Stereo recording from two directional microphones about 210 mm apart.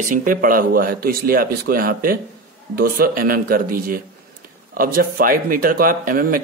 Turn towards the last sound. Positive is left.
turn(degrees=-40)  # may be behind; listen again after turning